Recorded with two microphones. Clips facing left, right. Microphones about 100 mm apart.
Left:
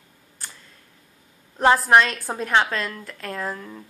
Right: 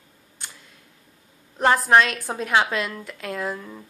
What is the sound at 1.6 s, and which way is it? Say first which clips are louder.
A woman's voice: left 1 dB; 5° left (ahead or behind).